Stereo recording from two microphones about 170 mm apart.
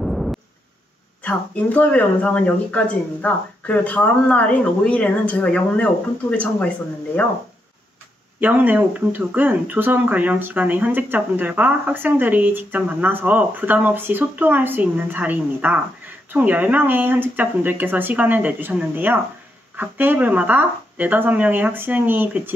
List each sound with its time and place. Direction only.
0.0 s a sound: centre (ahead or behind)
1.2 s speech: 10° left (ahead or behind)
8.4 s speech: 10° right (ahead or behind)